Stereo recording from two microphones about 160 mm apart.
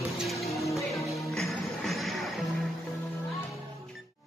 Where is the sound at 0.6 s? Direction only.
20° left (ahead or behind).